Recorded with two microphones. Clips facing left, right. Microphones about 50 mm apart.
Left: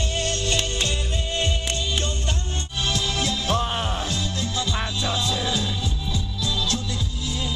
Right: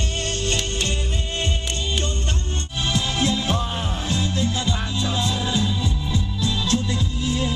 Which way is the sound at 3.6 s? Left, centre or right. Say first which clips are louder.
Left 2 dB; left.